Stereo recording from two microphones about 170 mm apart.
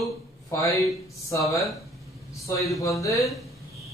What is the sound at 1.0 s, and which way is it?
Speech, 20° left (ahead or behind).